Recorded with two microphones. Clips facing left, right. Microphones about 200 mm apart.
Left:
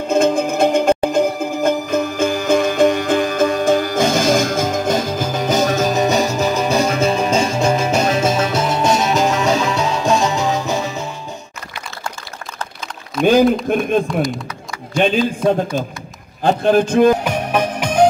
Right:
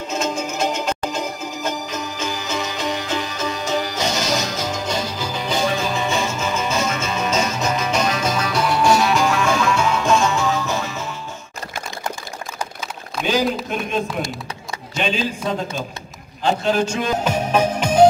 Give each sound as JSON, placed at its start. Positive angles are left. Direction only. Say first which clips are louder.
{"t": 0.1, "sound": "music", "louder": "left 10 dB", "side_deg": 55}
{"t": 13.2, "sound": "a sound", "louder": "left 8 dB", "side_deg": 55}
{"t": 15.0, "sound": "a man's voice", "louder": "left 7 dB", "side_deg": 50}
{"t": 17.2, "sound": "music", "louder": "even", "side_deg": 10}